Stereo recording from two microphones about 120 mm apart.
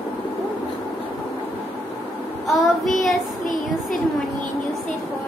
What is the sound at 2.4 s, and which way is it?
Child singing, centre (ahead or behind).